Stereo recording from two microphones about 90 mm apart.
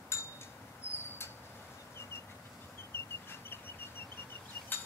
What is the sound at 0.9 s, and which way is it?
Mouse, 25° left (ahead or behind).